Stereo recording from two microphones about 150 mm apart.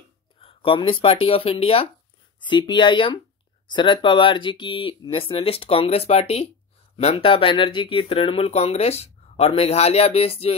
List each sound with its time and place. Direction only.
0.4 s speech: 35° left (ahead or behind)